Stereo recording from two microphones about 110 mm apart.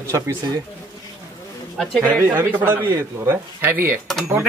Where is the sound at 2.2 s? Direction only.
20° right (ahead or behind).